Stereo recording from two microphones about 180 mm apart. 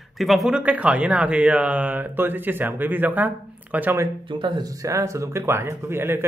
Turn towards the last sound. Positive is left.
turn(degrees=-15)  # may be behind; listen again after turning